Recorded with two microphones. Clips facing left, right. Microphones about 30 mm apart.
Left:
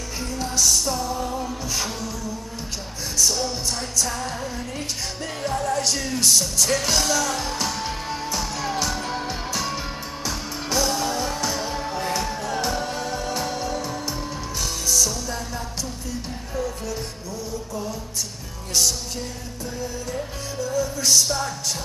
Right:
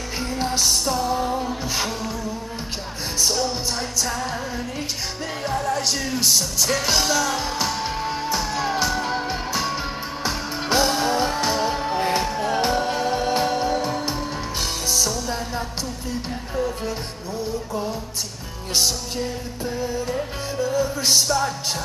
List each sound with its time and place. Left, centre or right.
0.2 s music: right
3.2 s music: right
4.0 s music: centre
5.4 s music: centre
10.2 s music: right
18.8 s music: right